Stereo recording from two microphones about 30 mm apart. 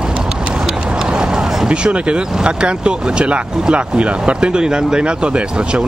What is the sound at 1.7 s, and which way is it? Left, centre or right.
Speech, right.